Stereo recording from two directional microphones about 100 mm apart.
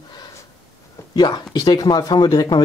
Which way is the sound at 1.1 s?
45° left (ahead or behind).